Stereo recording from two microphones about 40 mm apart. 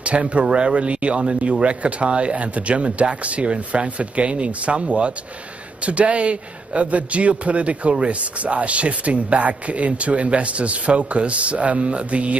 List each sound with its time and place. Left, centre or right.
0.0 s speech: right